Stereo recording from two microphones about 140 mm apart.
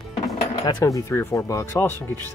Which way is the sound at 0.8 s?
20° left (ahead or behind).